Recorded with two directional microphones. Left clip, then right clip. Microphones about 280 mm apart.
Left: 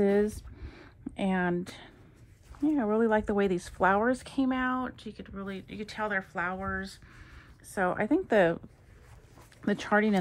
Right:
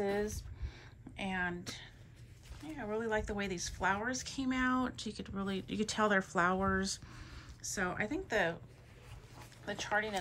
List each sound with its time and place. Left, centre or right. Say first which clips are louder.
0.6 s a sound: left 4 dB; left
2.7 s a woman's voice: left 9 dB; centre
7.7 s a woman's voice: left 9 dB; centre
9.7 s speech: left 8 dB; left